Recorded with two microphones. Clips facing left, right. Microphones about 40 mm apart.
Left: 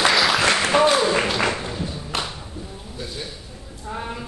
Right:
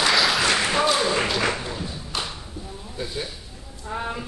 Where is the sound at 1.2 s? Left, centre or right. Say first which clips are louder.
Left 2 dB; centre.